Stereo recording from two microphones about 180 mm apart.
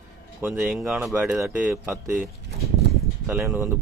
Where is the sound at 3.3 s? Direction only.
10° right (ahead or behind).